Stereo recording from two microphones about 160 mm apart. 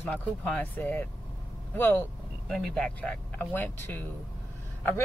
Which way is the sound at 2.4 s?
Centre (ahead or behind).